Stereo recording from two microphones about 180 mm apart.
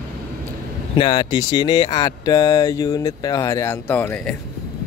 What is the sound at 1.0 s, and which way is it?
Speech, 30° left (ahead or behind).